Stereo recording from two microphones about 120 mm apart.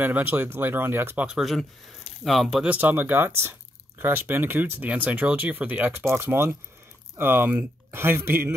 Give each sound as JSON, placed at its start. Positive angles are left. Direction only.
{"t": 0.0, "sound": "speech", "side_deg": -15}
{"t": 1.2, "sound": "speech", "side_deg": -5}